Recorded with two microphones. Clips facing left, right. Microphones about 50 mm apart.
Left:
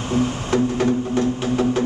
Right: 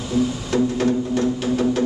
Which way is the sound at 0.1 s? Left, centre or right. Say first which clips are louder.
Even; left.